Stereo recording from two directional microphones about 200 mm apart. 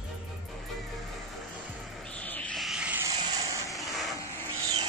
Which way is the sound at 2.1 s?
10° left (ahead or behind).